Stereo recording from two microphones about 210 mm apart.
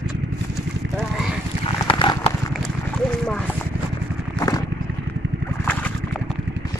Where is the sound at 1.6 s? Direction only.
25° left (ahead or behind).